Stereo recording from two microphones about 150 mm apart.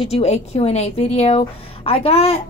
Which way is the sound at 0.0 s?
45° left (ahead or behind).